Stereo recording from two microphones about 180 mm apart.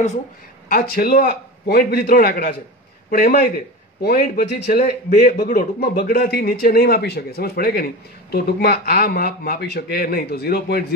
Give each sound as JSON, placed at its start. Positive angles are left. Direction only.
{"t": 0.7, "sound": "a man's voice", "side_deg": 55}